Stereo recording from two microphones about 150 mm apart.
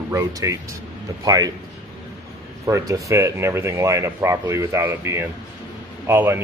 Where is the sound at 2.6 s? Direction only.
20° right (ahead or behind).